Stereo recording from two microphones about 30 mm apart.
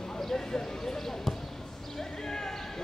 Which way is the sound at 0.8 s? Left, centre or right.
Centre.